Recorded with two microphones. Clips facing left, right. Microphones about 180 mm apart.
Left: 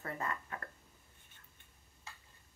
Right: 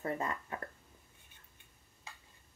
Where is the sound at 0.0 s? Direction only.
20° right (ahead or behind).